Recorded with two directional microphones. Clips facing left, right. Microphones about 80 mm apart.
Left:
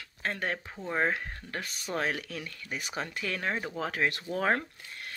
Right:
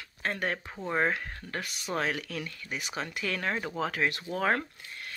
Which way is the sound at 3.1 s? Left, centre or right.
Left.